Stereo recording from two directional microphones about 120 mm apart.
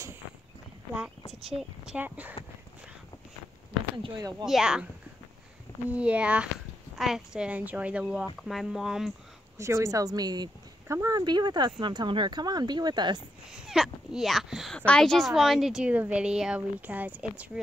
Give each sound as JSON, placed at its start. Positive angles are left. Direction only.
{"t": 1.4, "sound": "a woman's voice", "side_deg": -5}
{"t": 4.5, "sound": "speech", "side_deg": -5}
{"t": 5.9, "sound": "a woman's voice", "side_deg": -10}
{"t": 9.6, "sound": "speech", "side_deg": -25}
{"t": 13.5, "sound": "a woman's voice", "side_deg": -5}